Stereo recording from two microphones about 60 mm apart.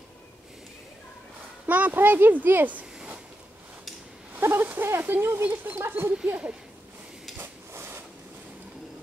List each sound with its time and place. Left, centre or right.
1.7 s speech: right
4.4 s speech: right
6.2 s speech: right
7.7 s a sound: right